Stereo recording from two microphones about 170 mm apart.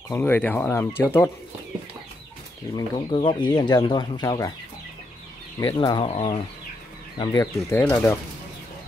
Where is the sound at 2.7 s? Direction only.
30° left (ahead or behind).